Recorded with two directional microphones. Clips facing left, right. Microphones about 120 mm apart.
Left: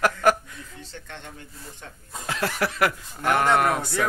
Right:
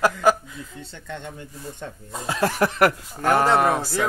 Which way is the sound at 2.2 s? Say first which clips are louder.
Right 5 dB; 20° right (ahead or behind).